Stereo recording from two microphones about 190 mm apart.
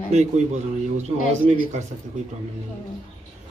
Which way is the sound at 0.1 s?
35° right (ahead or behind).